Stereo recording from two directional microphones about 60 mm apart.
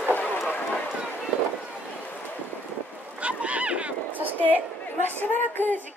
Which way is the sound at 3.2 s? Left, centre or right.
Right.